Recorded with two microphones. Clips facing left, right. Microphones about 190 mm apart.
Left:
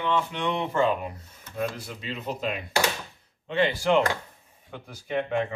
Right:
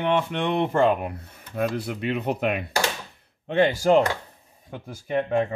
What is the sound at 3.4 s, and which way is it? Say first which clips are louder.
Speech: right 4 dB; 50° right (ahead or behind).